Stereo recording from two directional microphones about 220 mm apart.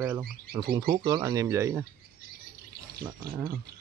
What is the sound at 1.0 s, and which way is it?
Speech, 20° right (ahead or behind).